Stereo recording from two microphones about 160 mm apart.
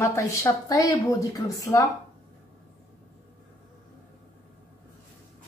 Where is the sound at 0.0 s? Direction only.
20° left (ahead or behind).